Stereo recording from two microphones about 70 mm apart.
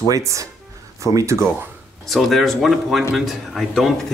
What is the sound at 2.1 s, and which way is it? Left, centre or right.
Speech, centre.